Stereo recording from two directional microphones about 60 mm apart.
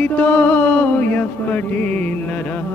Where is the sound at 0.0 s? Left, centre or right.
Left.